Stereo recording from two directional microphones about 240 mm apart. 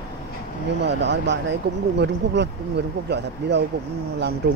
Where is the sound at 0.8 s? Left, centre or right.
Right.